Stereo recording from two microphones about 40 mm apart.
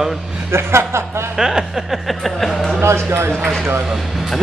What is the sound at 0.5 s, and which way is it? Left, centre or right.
Speech, right.